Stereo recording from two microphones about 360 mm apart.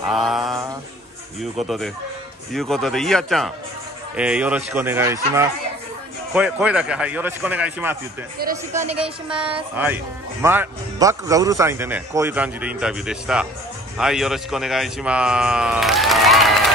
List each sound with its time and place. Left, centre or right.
0.0 s mantra: centre
2.5 s speech: centre
8.4 s speech: right
9.0 s speech: centre